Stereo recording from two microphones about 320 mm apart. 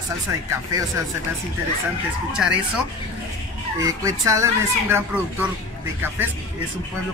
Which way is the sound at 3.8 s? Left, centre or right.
Centre.